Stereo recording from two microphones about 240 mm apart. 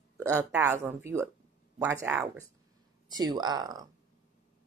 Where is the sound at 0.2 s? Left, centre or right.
Centre.